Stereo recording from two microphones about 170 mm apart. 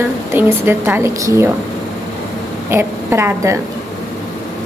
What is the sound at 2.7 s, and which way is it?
Speech, 15° right (ahead or behind).